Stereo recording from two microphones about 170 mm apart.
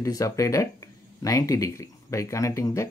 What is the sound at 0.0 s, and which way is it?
Speech, 20° left (ahead or behind).